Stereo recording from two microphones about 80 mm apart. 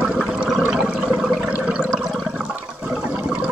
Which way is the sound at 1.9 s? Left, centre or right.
Centre.